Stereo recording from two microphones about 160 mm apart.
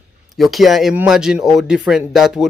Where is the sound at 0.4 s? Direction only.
Centre (ahead or behind).